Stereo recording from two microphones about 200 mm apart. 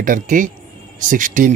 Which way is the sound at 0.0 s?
40° right (ahead or behind).